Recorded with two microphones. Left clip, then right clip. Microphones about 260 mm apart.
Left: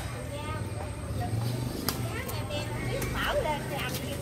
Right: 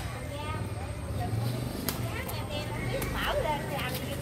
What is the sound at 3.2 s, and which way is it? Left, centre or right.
Vehicle, right.